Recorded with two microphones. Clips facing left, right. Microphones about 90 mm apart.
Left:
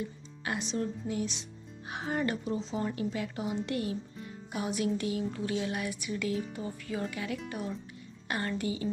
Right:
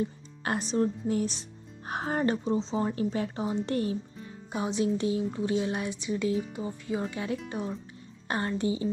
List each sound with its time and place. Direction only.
0.5 s a woman's voice: 40° right (ahead or behind)